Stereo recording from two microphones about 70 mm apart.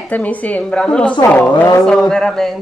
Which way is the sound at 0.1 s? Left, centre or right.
Left.